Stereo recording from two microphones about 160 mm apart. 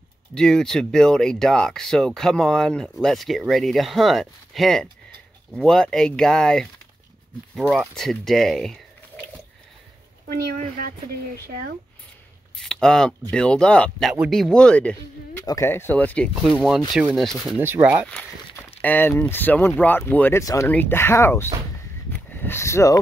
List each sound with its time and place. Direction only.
0.3 s speech: 5° left (ahead or behind)
7.7 s speech: centre (ahead or behind)
10.3 s a woman's voice: 65° right (ahead or behind)
12.5 s speech: 5° left (ahead or behind)
15.4 s speech: 20° left (ahead or behind)
16.9 s speech: 5° right (ahead or behind)
17.6 s speech: 15° right (ahead or behind)
18.8 s speech: 10° left (ahead or behind)